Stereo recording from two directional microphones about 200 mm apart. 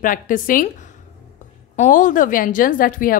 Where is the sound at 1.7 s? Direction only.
40° left (ahead or behind).